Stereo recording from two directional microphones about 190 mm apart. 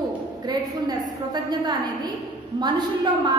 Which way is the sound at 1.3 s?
20° right (ahead or behind).